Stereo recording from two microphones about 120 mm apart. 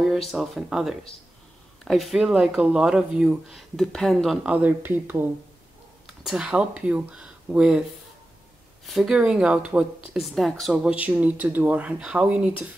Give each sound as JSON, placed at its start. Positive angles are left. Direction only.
{"t": 0.3, "sound": "speech", "side_deg": -5}
{"t": 4.5, "sound": "speech", "side_deg": -15}
{"t": 6.0, "sound": "speech", "side_deg": 0}
{"t": 8.8, "sound": "speech", "side_deg": -5}
{"t": 10.8, "sound": "speech", "side_deg": -10}